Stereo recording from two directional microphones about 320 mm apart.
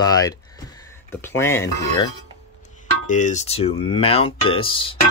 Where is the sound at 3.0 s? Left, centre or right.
Left.